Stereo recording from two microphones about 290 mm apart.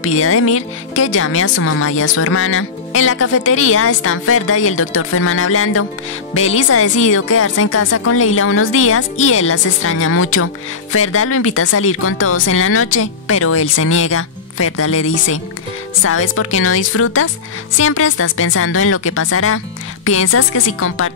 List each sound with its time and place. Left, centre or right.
0.0 s speech: left